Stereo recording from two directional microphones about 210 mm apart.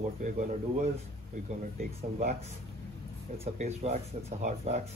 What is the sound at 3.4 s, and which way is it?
Speech, 30° right (ahead or behind).